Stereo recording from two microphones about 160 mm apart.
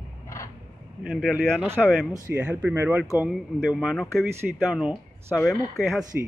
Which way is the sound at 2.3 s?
15° right (ahead or behind).